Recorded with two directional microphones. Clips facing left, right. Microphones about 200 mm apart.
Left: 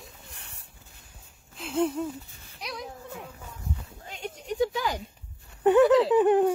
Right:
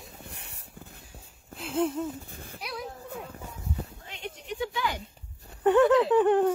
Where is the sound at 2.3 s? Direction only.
55° right (ahead or behind).